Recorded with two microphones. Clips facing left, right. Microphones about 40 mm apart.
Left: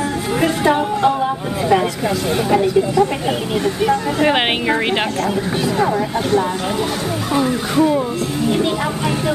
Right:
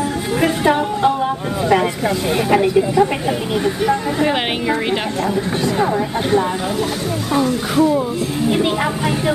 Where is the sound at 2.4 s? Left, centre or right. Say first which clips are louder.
Right 1 dB; centre.